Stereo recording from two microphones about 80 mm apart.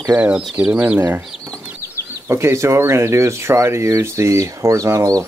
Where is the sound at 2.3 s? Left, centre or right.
Right.